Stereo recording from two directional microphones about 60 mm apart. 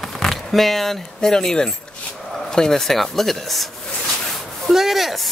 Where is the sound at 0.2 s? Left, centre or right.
Centre.